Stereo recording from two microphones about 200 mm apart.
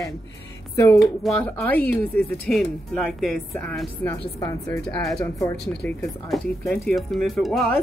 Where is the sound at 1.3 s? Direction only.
10° left (ahead or behind).